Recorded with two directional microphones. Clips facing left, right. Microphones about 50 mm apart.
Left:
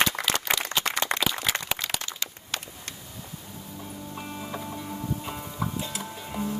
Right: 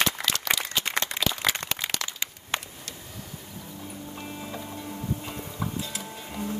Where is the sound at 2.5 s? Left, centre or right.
Right.